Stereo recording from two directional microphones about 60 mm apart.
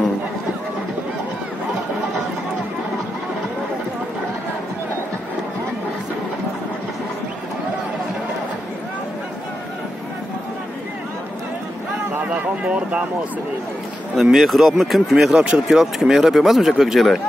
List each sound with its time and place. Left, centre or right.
12.6 s speech: centre
14.3 s speech: centre